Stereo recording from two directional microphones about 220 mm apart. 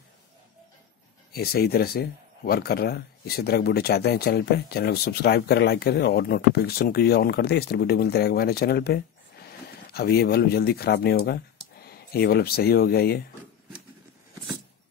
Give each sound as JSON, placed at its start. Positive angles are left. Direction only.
{"t": 1.3, "sound": "speech", "side_deg": 45}